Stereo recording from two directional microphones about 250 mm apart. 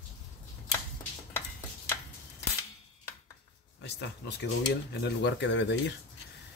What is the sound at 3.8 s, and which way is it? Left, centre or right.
Speech, left.